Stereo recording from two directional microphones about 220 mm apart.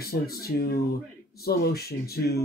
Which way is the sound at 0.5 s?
45° left (ahead or behind).